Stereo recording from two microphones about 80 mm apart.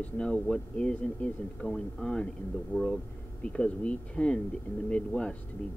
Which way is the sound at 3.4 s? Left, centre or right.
Centre.